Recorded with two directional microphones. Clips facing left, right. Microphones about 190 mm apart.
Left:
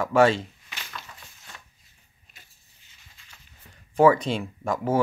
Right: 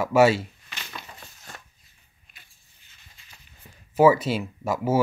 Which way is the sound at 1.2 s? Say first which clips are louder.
Right 4 dB; 45° right (ahead or behind).